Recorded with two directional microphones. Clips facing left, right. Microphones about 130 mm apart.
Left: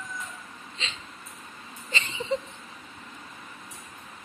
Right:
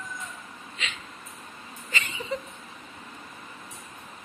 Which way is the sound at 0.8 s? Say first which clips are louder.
Right 1 dB; 30° left (ahead or behind).